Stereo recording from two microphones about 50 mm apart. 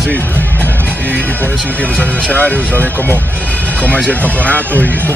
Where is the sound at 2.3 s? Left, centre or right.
Left.